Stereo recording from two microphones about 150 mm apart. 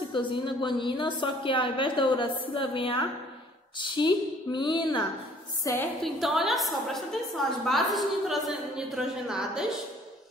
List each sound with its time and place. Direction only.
0.1 s a woman's voice: 35° left (ahead or behind)
6.0 s a woman's voice: centre (ahead or behind)